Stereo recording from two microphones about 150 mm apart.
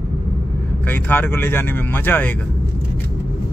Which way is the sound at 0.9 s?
15° left (ahead or behind).